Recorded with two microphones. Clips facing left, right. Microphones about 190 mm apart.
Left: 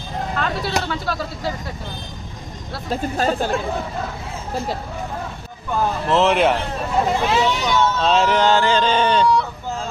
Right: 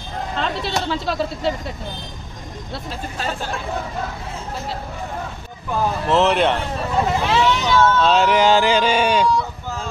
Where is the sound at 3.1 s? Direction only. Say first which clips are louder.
Left 7 dB; 45° left (ahead or behind).